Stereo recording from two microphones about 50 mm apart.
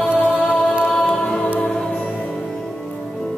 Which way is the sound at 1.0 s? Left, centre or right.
Left.